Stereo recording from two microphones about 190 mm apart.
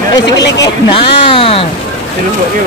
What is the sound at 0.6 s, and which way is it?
Speech, 30° left (ahead or behind).